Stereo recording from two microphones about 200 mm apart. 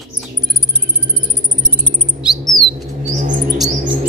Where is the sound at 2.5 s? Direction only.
40° right (ahead or behind).